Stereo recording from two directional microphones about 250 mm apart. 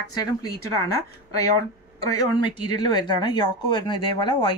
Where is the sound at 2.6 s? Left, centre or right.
Centre.